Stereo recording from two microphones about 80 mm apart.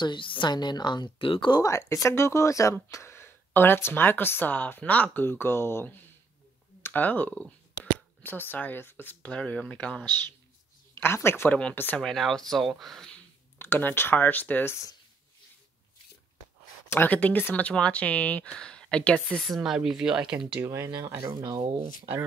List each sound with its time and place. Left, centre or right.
0.0 s a woman's voice: left
1.6 s speech: left
6.8 s a sound: left
8.2 s speech: left
9.3 s speech: centre
11.0 s speech: left
12.0 s speech: centre
13.6 s speech: left
16.9 s speech: left
19.4 s speech: centre
20.6 s speech: right
21.3 s speech: right